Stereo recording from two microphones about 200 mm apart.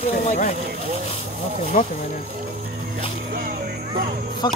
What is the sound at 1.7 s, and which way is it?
Speech, 40° left (ahead or behind).